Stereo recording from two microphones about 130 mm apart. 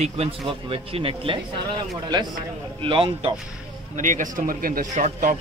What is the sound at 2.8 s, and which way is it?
Speech, 40° right (ahead or behind).